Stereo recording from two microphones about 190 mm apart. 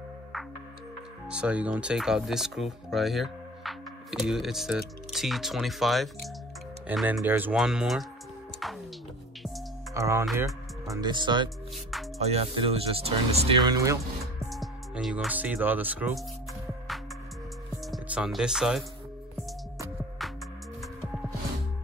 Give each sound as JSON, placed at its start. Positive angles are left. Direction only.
{"t": 1.3, "sound": "speech", "side_deg": -5}
{"t": 9.9, "sound": "speech", "side_deg": -15}
{"t": 11.7, "sound": "music", "side_deg": 0}
{"t": 12.2, "sound": "speech", "side_deg": -35}
{"t": 13.7, "sound": "speech", "side_deg": -15}
{"t": 14.5, "sound": "speech", "side_deg": 0}
{"t": 17.9, "sound": "speech", "side_deg": -5}
{"t": 20.8, "sound": "music", "side_deg": 0}